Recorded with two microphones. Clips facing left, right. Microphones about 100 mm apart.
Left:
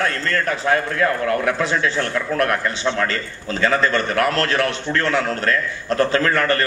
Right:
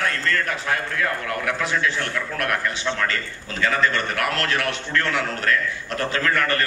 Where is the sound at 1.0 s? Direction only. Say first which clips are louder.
Left 6 dB; 30° left (ahead or behind).